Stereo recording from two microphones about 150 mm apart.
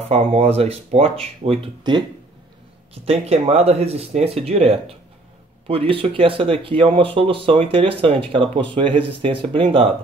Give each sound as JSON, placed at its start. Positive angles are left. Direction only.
{"t": 0.1, "sound": "speech", "side_deg": -40}